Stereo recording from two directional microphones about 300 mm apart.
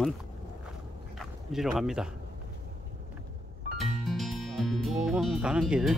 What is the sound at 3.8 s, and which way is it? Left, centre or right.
Music, centre.